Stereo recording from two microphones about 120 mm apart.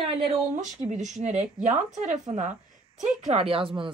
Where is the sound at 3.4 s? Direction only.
50° right (ahead or behind).